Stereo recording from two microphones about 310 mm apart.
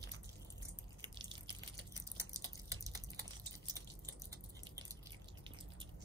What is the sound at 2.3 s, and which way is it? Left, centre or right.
Drip, centre.